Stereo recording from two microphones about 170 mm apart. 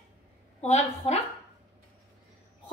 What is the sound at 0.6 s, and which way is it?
Speech, 40° left (ahead or behind).